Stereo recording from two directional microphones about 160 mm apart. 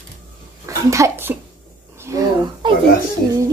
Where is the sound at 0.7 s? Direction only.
20° right (ahead or behind).